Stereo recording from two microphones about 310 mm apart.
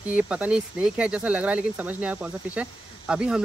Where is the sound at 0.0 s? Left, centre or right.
Centre.